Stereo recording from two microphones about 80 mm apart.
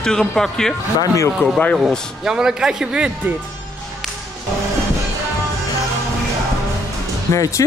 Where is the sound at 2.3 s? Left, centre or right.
Centre.